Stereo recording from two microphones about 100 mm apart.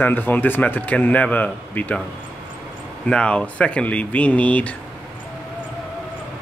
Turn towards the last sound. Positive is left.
turn(degrees=15)  # may be behind; listen again after turning